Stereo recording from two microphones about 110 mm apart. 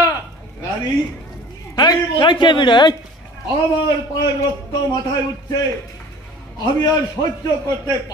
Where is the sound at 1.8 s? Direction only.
45° left (ahead or behind).